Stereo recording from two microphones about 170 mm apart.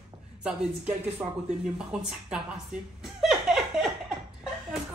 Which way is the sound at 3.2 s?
Centre (ahead or behind).